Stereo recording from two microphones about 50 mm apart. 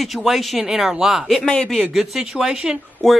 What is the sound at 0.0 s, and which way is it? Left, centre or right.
Speech, centre.